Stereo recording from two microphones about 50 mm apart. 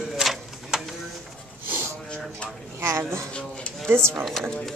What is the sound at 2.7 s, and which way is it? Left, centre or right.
Speech, right.